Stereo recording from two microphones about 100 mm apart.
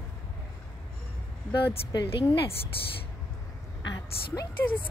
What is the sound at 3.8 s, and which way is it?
A woman's voice, 45° left (ahead or behind).